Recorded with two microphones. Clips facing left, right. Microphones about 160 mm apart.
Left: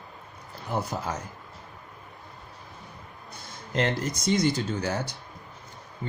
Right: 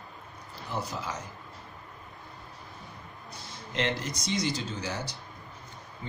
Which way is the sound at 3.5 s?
45° left (ahead or behind).